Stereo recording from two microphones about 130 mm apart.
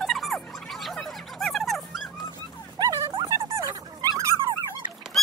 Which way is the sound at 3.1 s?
30° right (ahead or behind).